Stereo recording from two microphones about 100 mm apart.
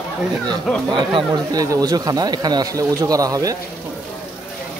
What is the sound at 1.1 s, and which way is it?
Speech, 40° right (ahead or behind).